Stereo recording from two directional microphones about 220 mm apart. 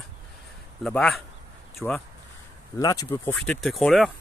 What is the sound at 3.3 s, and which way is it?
Speech, 5° left (ahead or behind).